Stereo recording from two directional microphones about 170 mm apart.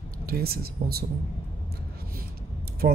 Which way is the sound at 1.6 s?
60° right (ahead or behind).